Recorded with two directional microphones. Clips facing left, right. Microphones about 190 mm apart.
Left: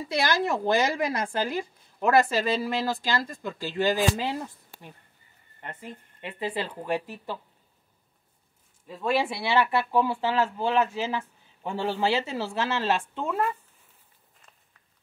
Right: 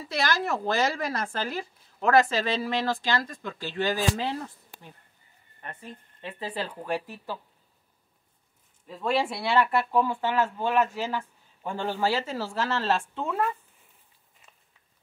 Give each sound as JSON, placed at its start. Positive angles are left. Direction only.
{"t": 0.1, "sound": "a woman's voice", "side_deg": 15}
{"t": 5.6, "sound": "speech", "side_deg": 20}
{"t": 8.8, "sound": "speech", "side_deg": 5}
{"t": 10.2, "sound": "speech", "side_deg": 25}
{"t": 11.0, "sound": "speech", "side_deg": 5}
{"t": 12.0, "sound": "speech", "side_deg": 20}
{"t": 12.9, "sound": "speech", "side_deg": 0}